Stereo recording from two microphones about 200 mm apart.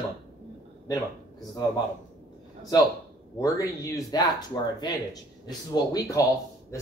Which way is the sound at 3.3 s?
15° left (ahead or behind).